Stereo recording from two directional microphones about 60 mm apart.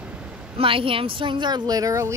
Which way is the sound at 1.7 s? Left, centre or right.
Right.